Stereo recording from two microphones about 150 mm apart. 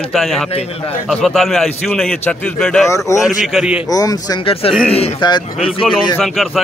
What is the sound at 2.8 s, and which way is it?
Speech, 20° left (ahead or behind).